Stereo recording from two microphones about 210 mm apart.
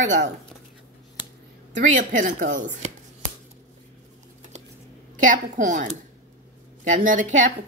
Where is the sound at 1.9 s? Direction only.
40° right (ahead or behind).